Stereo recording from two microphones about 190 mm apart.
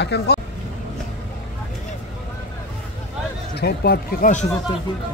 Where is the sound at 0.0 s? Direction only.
60° left (ahead or behind).